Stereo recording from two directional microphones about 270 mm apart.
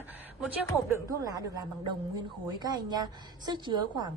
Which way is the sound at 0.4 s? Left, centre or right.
Centre.